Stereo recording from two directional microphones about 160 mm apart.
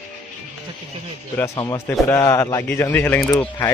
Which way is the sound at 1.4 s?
20° left (ahead or behind).